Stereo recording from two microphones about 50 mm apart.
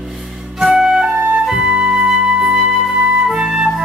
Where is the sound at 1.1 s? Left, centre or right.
Right.